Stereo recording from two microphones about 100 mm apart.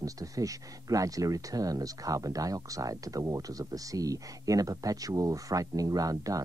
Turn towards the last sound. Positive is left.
turn(degrees=-35)  # may be behind; listen again after turning